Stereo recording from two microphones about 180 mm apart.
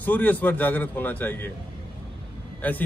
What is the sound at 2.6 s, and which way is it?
Speech, 10° left (ahead or behind).